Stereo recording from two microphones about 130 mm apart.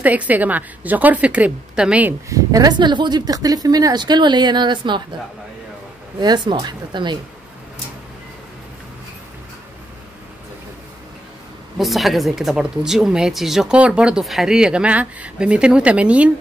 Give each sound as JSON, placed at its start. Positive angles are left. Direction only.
{"t": 0.0, "sound": "a woman's voice", "side_deg": -10}
{"t": 2.2, "sound": "speech", "side_deg": -25}
{"t": 6.1, "sound": "speech", "side_deg": -35}
{"t": 11.8, "sound": "speech", "side_deg": 0}